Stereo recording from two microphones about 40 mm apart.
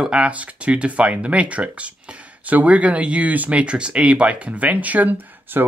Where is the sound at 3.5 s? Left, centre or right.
Right.